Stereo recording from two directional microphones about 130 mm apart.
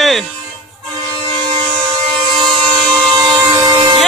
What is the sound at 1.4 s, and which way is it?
Vehicle, 35° right (ahead or behind).